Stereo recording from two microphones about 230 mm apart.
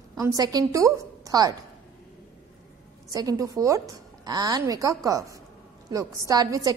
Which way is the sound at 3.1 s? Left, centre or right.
Centre.